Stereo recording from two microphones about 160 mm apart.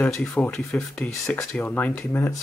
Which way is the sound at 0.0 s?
5° left (ahead or behind).